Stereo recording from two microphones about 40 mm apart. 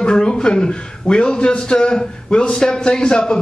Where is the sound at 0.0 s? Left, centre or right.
Left.